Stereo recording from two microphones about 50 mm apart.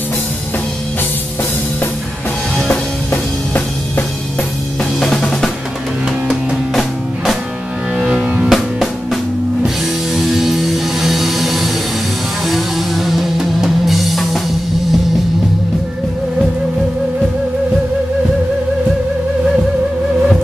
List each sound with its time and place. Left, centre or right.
3.1 s drum: left
5.0 s music: centre
6.7 s music: centre
8.0 s music: centre
8.5 s music: centre